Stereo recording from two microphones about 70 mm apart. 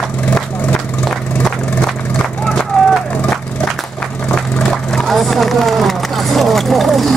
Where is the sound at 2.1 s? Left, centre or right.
Centre.